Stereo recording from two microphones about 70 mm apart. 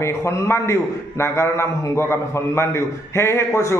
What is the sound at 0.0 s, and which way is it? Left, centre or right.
A man's voice, left.